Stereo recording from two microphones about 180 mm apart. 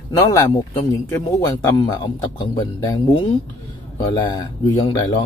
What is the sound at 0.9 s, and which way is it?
Speech, 15° left (ahead or behind).